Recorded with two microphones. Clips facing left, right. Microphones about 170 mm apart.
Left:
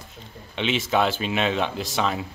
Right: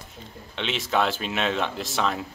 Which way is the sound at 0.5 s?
Centre (ahead or behind).